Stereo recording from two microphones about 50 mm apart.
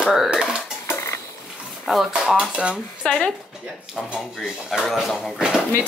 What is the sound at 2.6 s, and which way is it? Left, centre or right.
Speech, centre.